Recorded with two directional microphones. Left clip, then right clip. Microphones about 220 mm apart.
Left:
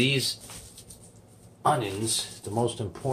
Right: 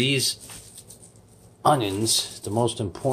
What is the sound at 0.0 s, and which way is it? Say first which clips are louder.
Speech: right 2 dB; 35° right (ahead or behind).